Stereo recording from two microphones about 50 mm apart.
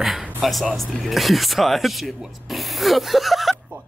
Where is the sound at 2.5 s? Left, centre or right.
Centre.